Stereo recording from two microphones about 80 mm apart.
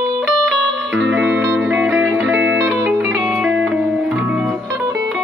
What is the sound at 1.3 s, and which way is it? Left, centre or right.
Music, right.